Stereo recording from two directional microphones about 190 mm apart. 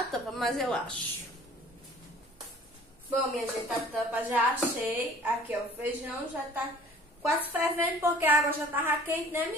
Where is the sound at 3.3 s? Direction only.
5° right (ahead or behind).